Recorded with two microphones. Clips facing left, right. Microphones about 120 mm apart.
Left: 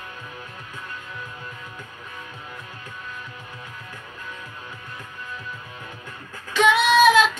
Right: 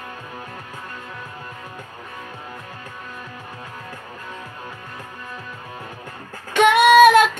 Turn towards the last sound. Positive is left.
turn(degrees=-55)  # may be behind; listen again after turning